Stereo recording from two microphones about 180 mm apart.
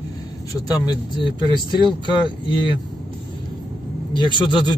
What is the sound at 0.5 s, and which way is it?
A man's voice, 20° left (ahead or behind).